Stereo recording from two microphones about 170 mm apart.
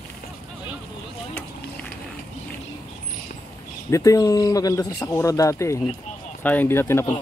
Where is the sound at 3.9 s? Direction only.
20° left (ahead or behind).